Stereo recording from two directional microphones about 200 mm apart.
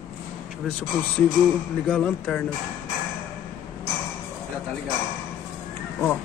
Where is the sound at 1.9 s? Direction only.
10° left (ahead or behind).